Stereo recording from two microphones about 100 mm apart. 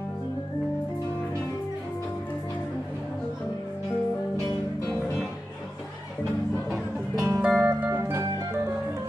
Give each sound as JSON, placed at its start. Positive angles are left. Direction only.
{"t": 7.2, "sound": "music", "side_deg": -25}
{"t": 7.4, "sound": "music", "side_deg": -15}
{"t": 8.0, "sound": "organ", "side_deg": -30}